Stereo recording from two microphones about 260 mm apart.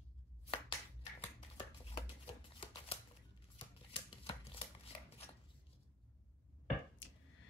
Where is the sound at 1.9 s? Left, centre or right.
Left.